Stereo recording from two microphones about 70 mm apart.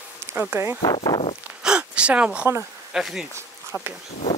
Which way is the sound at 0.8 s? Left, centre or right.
Left.